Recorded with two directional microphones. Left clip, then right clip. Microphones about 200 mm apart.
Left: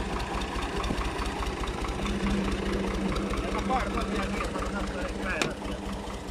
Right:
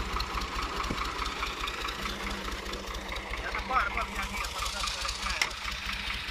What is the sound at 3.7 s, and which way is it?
Vehicle, 55° left (ahead or behind).